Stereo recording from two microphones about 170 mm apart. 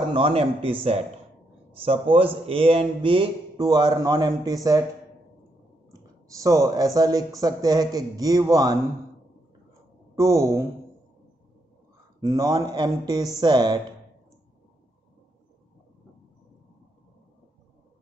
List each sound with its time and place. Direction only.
0.1 s a man's voice: 35° right (ahead or behind)
6.2 s a man's voice: 20° right (ahead or behind)
10.1 s a man's voice: 20° right (ahead or behind)
12.2 s a man's voice: 20° right (ahead or behind)